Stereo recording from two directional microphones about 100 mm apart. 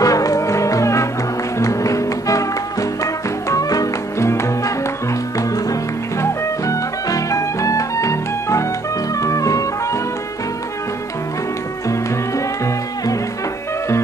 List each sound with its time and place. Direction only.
0.0 s music: 35° left (ahead or behind)
6.2 s music: 35° left (ahead or behind)